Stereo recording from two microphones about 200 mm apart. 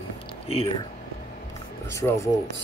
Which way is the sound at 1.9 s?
15° left (ahead or behind).